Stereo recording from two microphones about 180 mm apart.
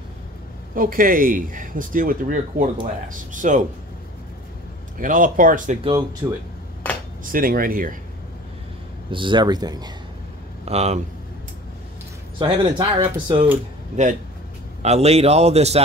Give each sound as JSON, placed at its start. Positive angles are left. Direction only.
{"t": 0.7, "sound": "speech", "side_deg": -50}
{"t": 4.9, "sound": "speech", "side_deg": -50}
{"t": 6.2, "sound": "speech", "side_deg": -10}
{"t": 7.3, "sound": "speech", "side_deg": -55}
{"t": 9.1, "sound": "speech", "side_deg": -25}
{"t": 10.6, "sound": "speech", "side_deg": -35}
{"t": 12.4, "sound": "speech", "side_deg": -30}
{"t": 14.0, "sound": "a man's voice", "side_deg": -40}